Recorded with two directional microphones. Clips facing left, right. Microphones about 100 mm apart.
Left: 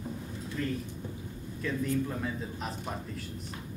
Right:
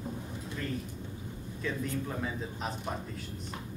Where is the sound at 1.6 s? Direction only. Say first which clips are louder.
Left 4 dB; centre (ahead or behind).